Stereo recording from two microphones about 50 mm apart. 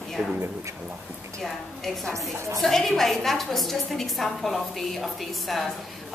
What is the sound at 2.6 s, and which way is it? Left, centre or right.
A woman's voice, centre.